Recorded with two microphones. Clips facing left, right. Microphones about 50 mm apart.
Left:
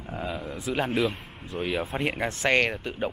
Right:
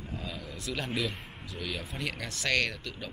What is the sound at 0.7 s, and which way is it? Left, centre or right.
A man's voice, left.